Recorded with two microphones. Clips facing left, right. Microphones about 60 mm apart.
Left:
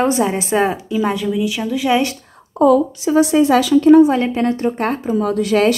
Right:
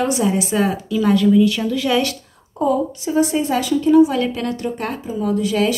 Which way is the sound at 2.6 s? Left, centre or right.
Left.